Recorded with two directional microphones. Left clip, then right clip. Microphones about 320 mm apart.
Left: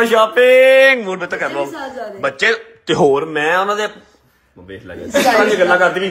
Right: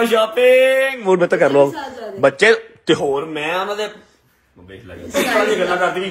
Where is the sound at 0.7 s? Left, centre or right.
Left.